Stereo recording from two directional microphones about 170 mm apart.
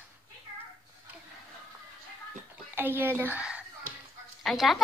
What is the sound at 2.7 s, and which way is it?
A woman's voice, 10° right (ahead or behind).